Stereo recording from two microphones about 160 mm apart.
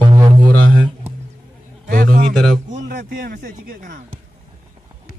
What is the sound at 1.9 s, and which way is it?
Speech, 60° right (ahead or behind).